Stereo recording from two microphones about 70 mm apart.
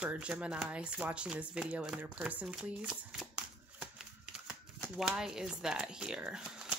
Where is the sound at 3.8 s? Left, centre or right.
Centre.